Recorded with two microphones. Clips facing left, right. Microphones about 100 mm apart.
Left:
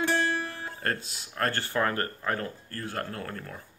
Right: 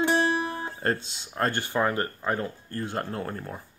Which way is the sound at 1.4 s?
20° right (ahead or behind).